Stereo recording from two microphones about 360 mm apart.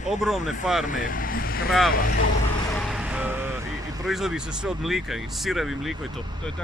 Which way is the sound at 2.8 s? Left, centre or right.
Centre.